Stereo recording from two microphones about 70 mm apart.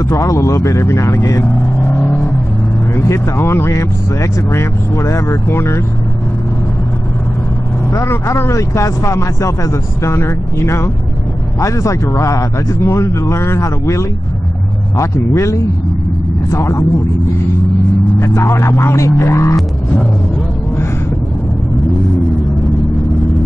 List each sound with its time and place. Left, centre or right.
0.2 s speech: left
3.0 s speech: left
7.9 s speech: left
18.2 s speech: left